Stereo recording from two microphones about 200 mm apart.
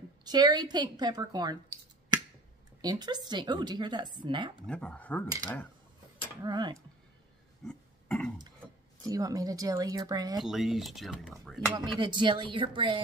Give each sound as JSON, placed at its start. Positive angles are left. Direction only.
{"t": 0.2, "sound": "a woman's voice", "side_deg": -20}
{"t": 2.8, "sound": "a woman's voice", "side_deg": -20}
{"t": 4.6, "sound": "speech", "side_deg": 5}
{"t": 6.4, "sound": "a woman's voice", "side_deg": -20}
{"t": 7.6, "sound": "a sound", "side_deg": 5}
{"t": 9.0, "sound": "speech", "side_deg": -15}
{"t": 10.4, "sound": "speech", "side_deg": 0}
{"t": 11.6, "sound": "a woman's voice", "side_deg": -20}